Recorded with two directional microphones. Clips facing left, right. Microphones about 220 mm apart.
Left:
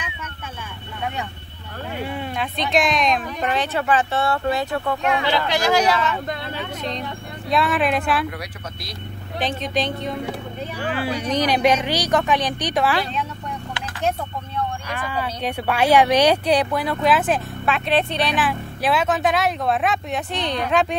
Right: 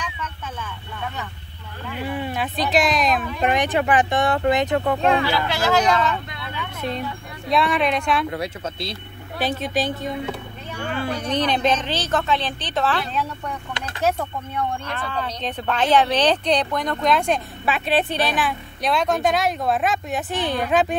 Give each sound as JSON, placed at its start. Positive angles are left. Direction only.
{"t": 2.1, "sound": "speech", "side_deg": -5}
{"t": 3.4, "sound": "speech", "side_deg": -15}
{"t": 4.9, "sound": "speech", "side_deg": -35}
{"t": 5.2, "sound": "a woman's voice", "side_deg": 20}
{"t": 6.2, "sound": "vehicle", "side_deg": 45}
{"t": 7.4, "sound": "speech", "side_deg": 0}
{"t": 8.3, "sound": "speech", "side_deg": -25}
{"t": 9.4, "sound": "speech", "side_deg": -5}
{"t": 10.8, "sound": "a woman's voice", "side_deg": 5}
{"t": 14.9, "sound": "speech", "side_deg": 10}